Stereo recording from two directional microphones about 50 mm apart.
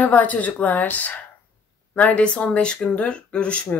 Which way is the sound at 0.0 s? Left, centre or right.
Left.